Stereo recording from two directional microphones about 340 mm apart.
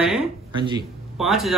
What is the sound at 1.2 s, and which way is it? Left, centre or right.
Speech, centre.